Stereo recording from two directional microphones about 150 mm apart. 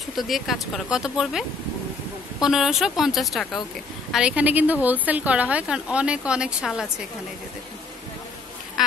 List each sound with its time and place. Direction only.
0.1 s speech: centre (ahead or behind)
2.4 s a woman's voice: 5° right (ahead or behind)